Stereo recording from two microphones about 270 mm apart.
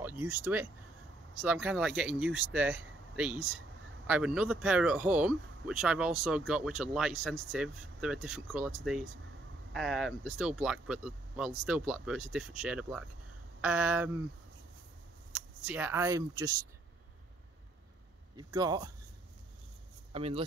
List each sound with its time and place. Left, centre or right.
0.0 s speech: centre
15.6 s speech: centre
18.3 s speech: centre
20.1 s speech: right